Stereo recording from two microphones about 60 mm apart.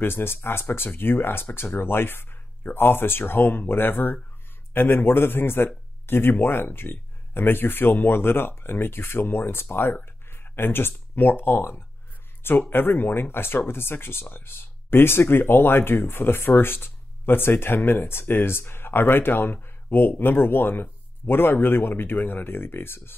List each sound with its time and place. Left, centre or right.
0.0 s speech: left